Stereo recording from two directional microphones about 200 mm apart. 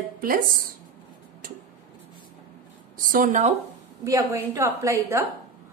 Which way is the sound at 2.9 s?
45° right (ahead or behind).